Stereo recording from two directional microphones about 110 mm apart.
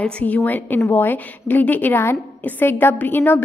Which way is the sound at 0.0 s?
15° left (ahead or behind).